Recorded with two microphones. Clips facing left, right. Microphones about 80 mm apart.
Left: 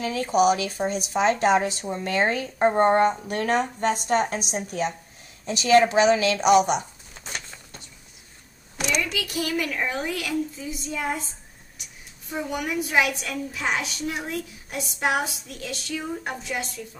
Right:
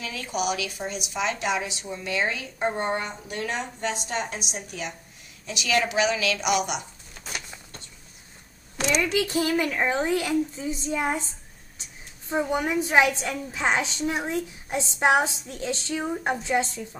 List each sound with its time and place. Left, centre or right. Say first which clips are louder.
0.0 s a woman's voice: left 8 dB; left
7.2 s a sound: even; centre
9.1 s a woman's voice: right 4 dB; right